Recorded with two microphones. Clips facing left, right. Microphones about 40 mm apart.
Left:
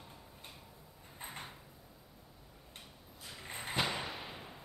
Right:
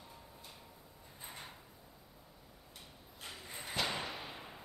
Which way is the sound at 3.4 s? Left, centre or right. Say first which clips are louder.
Left 6 dB; left.